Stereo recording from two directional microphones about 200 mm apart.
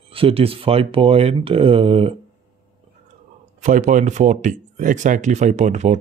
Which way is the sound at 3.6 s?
40° right (ahead or behind).